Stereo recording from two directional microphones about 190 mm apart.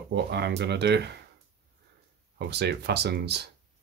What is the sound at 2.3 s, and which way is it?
Speech, 60° right (ahead or behind).